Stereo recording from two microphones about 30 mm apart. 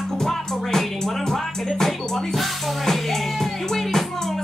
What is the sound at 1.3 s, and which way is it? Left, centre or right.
Music, centre.